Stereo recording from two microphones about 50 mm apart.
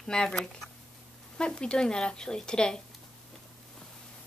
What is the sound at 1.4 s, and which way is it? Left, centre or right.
Speech, centre.